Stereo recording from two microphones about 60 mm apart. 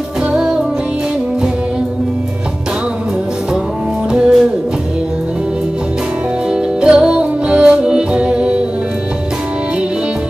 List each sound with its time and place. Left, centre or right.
0.3 s music: centre
4.1 s music: centre
6.5 s music: centre